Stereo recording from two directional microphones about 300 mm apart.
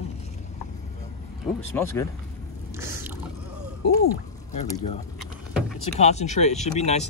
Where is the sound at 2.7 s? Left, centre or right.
Centre.